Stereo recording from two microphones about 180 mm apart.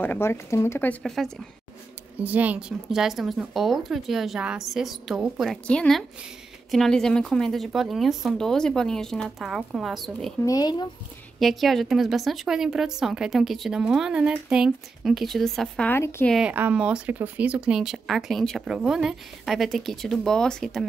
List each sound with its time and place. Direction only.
0.0 s a woman's voice: 10° left (ahead or behind)
10.4 s speech: 20° left (ahead or behind)
11.3 s a woman's voice: centre (ahead or behind)
16.3 s a woman's voice: 10° right (ahead or behind)